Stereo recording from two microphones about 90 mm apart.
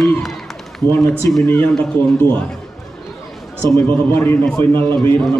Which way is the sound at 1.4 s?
20° left (ahead or behind).